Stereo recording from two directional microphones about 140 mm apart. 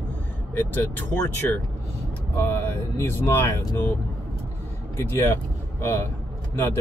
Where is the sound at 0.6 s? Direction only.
15° left (ahead or behind).